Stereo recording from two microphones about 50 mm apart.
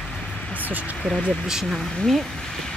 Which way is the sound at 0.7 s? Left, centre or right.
Right.